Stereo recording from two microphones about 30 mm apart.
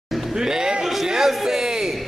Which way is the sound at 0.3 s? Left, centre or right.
Right.